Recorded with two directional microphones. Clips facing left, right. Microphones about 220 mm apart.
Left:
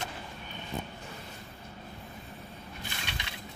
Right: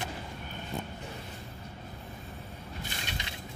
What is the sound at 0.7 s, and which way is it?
Speech, centre (ahead or behind).